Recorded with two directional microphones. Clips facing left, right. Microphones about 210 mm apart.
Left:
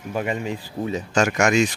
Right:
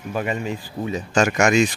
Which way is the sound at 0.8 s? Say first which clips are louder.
Left 1 dB; 45° left (ahead or behind).